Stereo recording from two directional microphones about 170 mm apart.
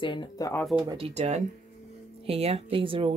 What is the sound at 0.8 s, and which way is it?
Speech, 35° right (ahead or behind).